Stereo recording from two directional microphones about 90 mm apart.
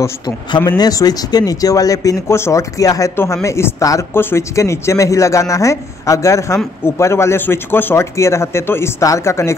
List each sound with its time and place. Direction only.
0.7 s speech: 45° left (ahead or behind); by 9.6 s 30° left (ahead or behind)